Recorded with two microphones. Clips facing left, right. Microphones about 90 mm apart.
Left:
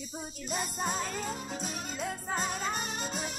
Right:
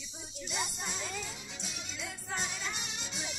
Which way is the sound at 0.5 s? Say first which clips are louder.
Left 6 dB; 45° left (ahead or behind).